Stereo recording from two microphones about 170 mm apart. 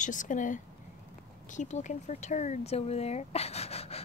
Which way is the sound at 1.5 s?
45° left (ahead or behind).